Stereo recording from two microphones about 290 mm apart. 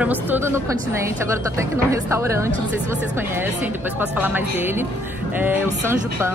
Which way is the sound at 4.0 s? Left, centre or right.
Centre.